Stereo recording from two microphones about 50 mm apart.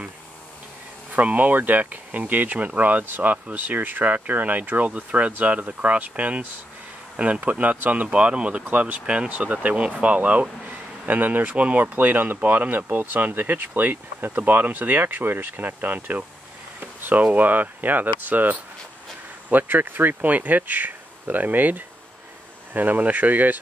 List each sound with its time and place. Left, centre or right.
1.1 s speech: right
8.1 s speech: centre
8.6 s speech: right
9.0 s speech: right